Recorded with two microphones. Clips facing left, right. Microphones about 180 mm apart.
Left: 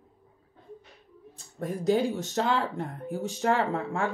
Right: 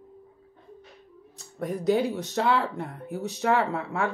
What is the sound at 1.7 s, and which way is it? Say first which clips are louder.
Speech: right 1 dB; 45° left (ahead or behind).